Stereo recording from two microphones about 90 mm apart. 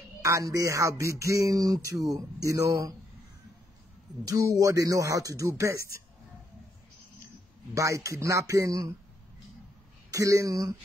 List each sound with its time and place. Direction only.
0.2 s speech: 35° right (ahead or behind)
4.3 s speech: 40° right (ahead or behind)
7.7 s speech: 35° right (ahead or behind)
10.1 s speech: 40° right (ahead or behind)